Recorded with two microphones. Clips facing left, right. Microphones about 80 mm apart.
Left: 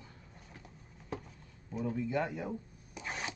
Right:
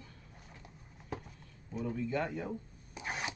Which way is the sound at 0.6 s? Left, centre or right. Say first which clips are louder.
Even; centre.